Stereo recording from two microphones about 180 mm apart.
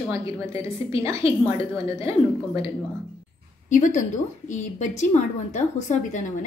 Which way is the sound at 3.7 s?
45° left (ahead or behind).